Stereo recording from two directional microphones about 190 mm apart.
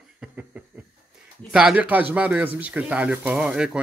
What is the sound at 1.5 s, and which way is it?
Speech, 5° right (ahead or behind).